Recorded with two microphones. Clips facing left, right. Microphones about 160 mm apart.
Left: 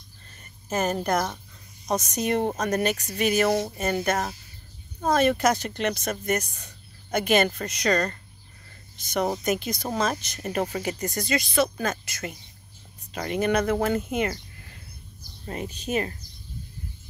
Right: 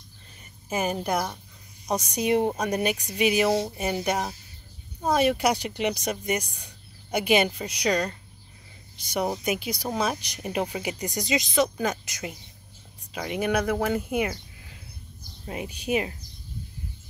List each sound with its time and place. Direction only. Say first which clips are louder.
0.7 s speech: left 2 dB; 10° right (ahead or behind)